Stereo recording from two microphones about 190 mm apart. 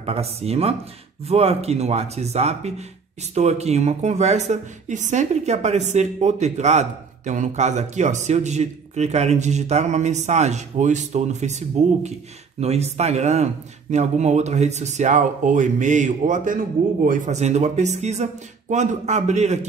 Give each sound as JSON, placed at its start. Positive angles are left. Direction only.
{"t": 0.0, "sound": "speech", "side_deg": -35}